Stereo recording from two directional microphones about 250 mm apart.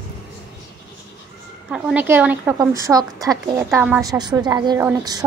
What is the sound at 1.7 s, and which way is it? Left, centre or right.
A woman's voice, centre.